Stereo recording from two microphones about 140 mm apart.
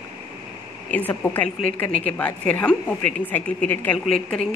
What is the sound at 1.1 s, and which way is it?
A woman's voice, 15° left (ahead or behind).